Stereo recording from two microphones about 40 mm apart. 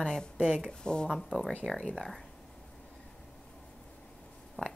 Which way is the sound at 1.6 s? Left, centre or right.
Right.